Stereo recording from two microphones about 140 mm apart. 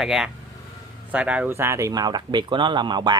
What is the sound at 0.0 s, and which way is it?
Speech, 5° right (ahead or behind).